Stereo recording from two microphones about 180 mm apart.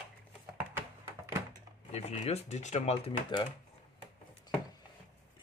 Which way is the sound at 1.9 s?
35° left (ahead or behind).